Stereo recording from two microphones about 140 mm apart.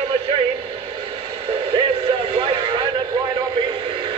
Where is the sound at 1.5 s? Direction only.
45° right (ahead or behind).